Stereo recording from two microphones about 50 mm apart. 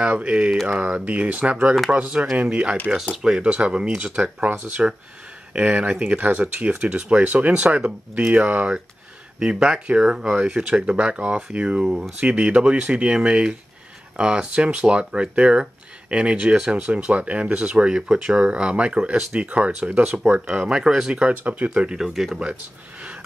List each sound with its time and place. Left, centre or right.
0.0 s speech: right
0.7 s speech: right
2.5 s speech: centre
3.2 s speech: centre
3.4 s speech: right
4.4 s speech: right
9.4 s speech: centre
21.6 s speech: right
21.9 s speech: centre